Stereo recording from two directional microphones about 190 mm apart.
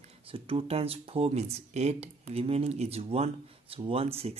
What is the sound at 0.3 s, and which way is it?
Speech, 30° right (ahead or behind).